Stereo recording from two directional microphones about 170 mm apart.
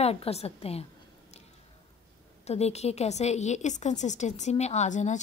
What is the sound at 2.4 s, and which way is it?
A woman's voice, 40° left (ahead or behind).